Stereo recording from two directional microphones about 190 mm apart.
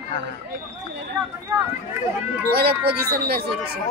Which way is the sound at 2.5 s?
55° right (ahead or behind).